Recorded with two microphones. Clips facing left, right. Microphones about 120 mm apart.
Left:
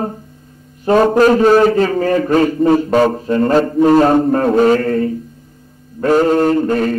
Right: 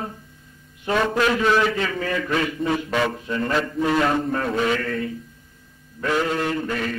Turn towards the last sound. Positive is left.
turn(degrees=40)  # may be behind; listen again after turning